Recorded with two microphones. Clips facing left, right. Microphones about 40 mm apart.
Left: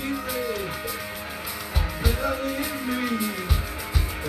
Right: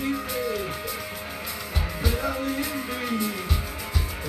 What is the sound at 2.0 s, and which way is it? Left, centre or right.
Music, centre.